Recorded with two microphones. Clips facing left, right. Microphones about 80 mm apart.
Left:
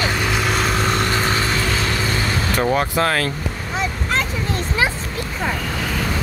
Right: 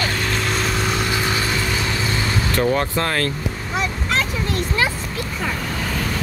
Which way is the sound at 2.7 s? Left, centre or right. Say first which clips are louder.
Left 2 dB; centre.